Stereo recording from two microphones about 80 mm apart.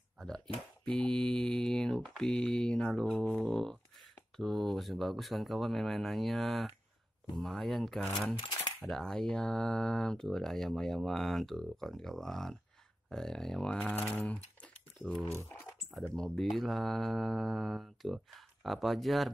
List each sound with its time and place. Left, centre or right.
0.8 s mantra: centre
3.4 s speech: centre
8.4 s a sound: left
8.8 s speech: centre
13.9 s speech: left
14.3 s crumpling: centre
15.3 s speech: left
16.2 s speech: centre